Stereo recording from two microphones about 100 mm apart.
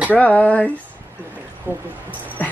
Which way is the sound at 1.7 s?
20° right (ahead or behind).